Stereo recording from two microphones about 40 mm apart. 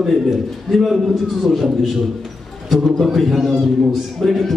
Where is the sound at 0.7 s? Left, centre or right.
Centre.